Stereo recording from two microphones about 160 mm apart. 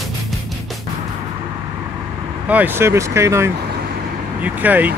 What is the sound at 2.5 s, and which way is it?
Speech, 10° right (ahead or behind).